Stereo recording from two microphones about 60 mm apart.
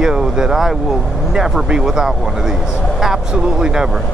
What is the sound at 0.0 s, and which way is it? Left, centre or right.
Speech, centre.